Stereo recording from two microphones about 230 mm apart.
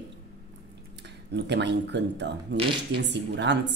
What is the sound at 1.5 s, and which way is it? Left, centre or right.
Speech, right.